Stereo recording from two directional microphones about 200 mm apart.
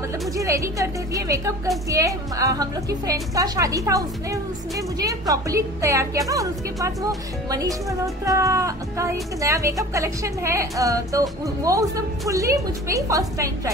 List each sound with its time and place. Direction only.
0.4 s speech: 15° right (ahead or behind)